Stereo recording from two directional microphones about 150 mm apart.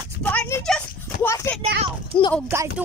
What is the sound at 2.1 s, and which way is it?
Speech, 35° left (ahead or behind).